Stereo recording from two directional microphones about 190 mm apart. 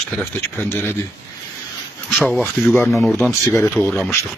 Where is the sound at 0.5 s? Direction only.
10° left (ahead or behind).